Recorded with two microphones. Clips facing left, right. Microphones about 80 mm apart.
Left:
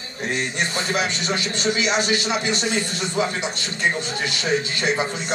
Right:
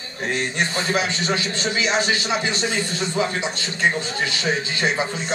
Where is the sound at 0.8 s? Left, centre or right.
Right.